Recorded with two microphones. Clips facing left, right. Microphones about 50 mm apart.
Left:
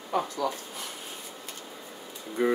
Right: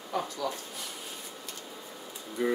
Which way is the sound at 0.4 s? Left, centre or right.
Left.